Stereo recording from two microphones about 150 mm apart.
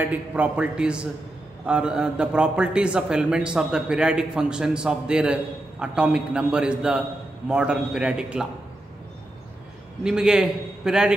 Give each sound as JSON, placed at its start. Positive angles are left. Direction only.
{"t": 0.0, "sound": "a man's voice", "side_deg": -10}
{"t": 10.0, "sound": "a man's voice", "side_deg": -5}